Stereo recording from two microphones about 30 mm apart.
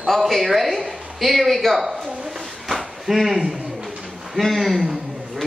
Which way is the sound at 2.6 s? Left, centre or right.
Centre.